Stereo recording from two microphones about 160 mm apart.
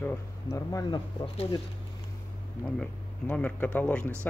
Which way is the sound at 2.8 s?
10° left (ahead or behind).